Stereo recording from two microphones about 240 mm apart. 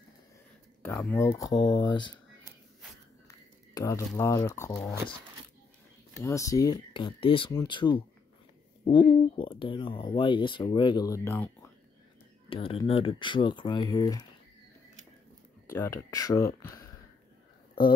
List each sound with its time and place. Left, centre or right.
0.8 s speech: centre
3.3 s speech: centre
6.2 s speech: centre
12.4 s speech: left
15.7 s speech: centre